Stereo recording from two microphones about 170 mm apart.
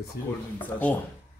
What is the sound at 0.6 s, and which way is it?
Speech, 10° left (ahead or behind).